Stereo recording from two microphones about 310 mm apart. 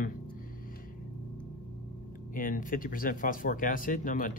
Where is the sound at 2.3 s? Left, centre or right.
Left.